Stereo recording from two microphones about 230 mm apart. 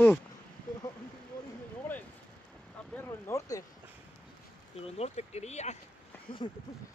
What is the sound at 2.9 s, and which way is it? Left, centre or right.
Speech, centre.